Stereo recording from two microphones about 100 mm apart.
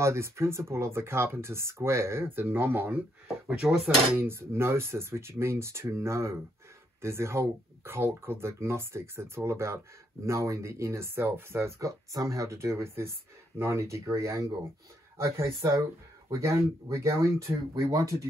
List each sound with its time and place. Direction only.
0.0 s speech: 25° right (ahead or behind)
3.4 s speech: 10° right (ahead or behind)
4.2 s speech: 25° right (ahead or behind)